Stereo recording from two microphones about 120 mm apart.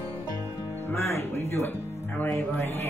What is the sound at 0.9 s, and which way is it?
Speech, 20° left (ahead or behind).